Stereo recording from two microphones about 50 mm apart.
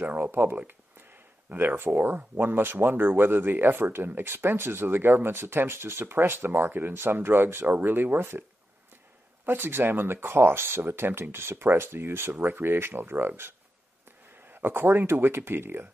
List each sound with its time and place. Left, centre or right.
0.0 s speech: right
1.6 s speech: right
7.6 s speech: right
9.5 s speech: right